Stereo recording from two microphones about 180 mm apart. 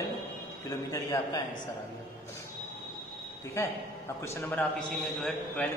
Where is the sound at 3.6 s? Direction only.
15° left (ahead or behind).